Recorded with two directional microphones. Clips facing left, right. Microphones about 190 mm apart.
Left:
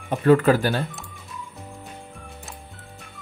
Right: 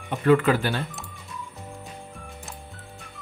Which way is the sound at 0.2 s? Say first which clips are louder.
Left 3 dB; 40° left (ahead or behind).